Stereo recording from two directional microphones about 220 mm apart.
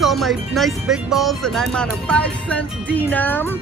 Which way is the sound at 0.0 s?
Centre (ahead or behind).